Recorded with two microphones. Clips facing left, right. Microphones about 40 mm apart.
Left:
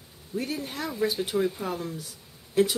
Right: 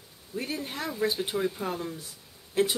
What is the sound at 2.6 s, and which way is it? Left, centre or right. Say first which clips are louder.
Speech: left 3 dB; centre.